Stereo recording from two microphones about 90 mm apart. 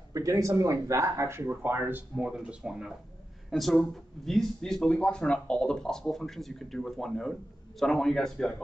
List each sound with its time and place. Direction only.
0.1 s speech: 40° right (ahead or behind); by 2.2 s 20° right (ahead or behind)
2.2 s speech: 5° right (ahead or behind)